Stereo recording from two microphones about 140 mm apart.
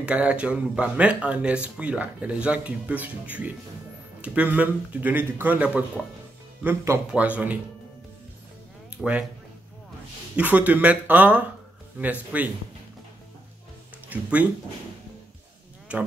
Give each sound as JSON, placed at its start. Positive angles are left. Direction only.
{"t": 0.0, "sound": "speech", "side_deg": -10}
{"t": 8.9, "sound": "speech", "side_deg": -10}
{"t": 10.3, "sound": "speech", "side_deg": -10}
{"t": 14.0, "sound": "speech", "side_deg": -10}
{"t": 15.9, "sound": "speech", "side_deg": -10}